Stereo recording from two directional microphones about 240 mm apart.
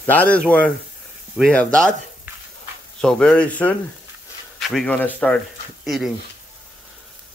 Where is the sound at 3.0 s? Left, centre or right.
Centre.